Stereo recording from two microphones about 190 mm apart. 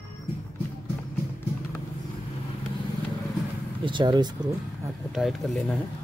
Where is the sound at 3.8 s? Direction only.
25° right (ahead or behind).